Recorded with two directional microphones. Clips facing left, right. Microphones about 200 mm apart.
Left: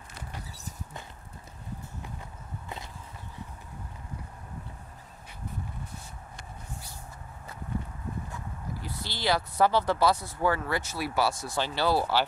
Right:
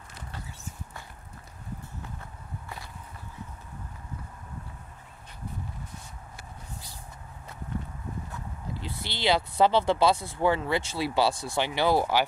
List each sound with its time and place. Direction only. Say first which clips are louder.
8.7 s speech: right 3 dB; 25° right (ahead or behind)
11.6 s speech: right 2 dB; 15° right (ahead or behind)